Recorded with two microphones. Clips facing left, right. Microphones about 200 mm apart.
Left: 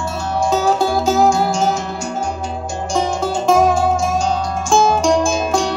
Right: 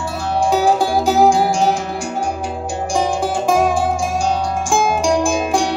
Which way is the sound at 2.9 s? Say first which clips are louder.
Even; 15° right (ahead or behind).